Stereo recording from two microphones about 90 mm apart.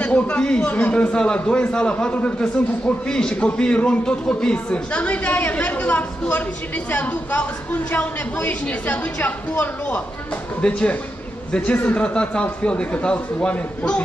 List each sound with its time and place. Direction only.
0.0 s a man's voice: 15° left (ahead or behind)